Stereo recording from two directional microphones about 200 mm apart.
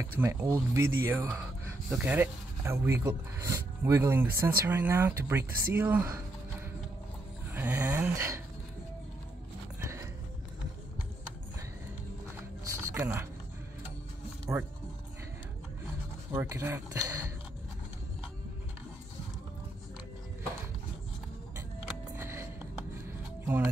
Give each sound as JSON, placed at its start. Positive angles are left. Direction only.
{"t": 0.0, "sound": "speech", "side_deg": -15}
{"t": 5.4, "sound": "speech", "side_deg": -50}
{"t": 5.8, "sound": "speech", "side_deg": -10}
{"t": 7.5, "sound": "speech", "side_deg": -10}
{"t": 9.8, "sound": "music", "side_deg": -15}
{"t": 12.6, "sound": "a sound", "side_deg": -15}
{"t": 14.5, "sound": "speech", "side_deg": -15}
{"t": 16.3, "sound": "speech", "side_deg": -10}
{"t": 22.1, "sound": "music", "side_deg": -15}
{"t": 23.4, "sound": "speech", "side_deg": -10}